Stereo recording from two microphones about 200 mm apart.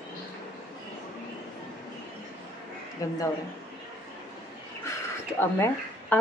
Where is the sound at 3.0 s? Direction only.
15° left (ahead or behind).